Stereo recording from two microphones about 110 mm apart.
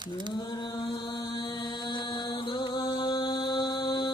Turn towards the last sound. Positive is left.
turn(degrees=45)  # may be behind; listen again after turning